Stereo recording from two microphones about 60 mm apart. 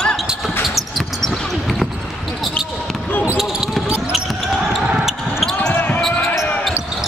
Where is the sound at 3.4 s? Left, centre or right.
Centre.